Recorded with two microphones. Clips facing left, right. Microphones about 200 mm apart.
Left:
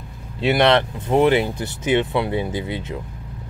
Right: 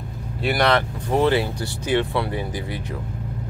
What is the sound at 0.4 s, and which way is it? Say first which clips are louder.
Speech: left 4 dB; 25° left (ahead or behind).